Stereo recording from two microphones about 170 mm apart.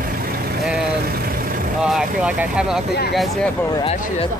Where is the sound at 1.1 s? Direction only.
60° right (ahead or behind).